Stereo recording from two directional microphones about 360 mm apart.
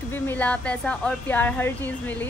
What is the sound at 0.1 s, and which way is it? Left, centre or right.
Speech, centre.